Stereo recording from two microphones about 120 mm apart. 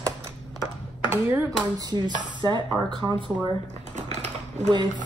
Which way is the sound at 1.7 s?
35° right (ahead or behind).